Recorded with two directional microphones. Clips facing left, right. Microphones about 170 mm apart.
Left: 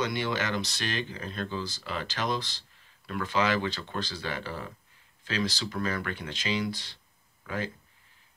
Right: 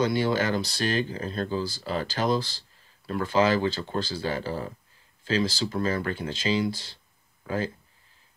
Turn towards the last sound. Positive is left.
turn(degrees=-35)  # may be behind; listen again after turning